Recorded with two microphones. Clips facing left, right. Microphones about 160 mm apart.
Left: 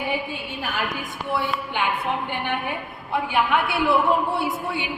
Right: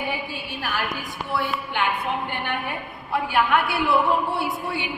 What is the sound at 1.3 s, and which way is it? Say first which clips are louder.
Speech: left 1 dB; 15° left (ahead or behind).